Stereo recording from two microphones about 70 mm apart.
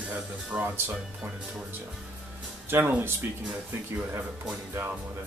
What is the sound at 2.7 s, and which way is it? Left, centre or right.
Speech, right.